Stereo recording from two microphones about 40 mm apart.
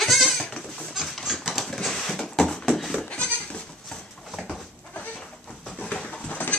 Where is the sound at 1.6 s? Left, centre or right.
Centre.